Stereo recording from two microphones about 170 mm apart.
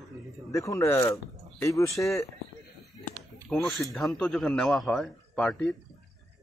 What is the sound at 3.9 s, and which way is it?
A man's voice, centre (ahead or behind).